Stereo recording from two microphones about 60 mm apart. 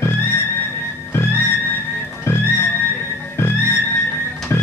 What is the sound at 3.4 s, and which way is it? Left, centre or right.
Music, left.